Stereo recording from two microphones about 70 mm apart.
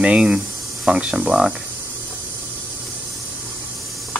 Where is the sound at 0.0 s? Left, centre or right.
Centre.